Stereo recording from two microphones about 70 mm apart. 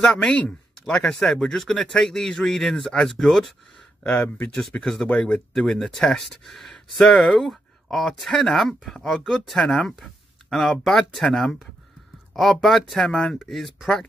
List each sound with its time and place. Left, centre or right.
0.0 s speech: centre
0.9 s a man's voice: centre
4.0 s speech: left
5.0 s speech: centre
5.5 s a man's voice: centre